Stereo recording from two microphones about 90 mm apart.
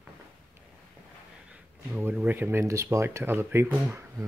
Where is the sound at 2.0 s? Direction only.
20° right (ahead or behind).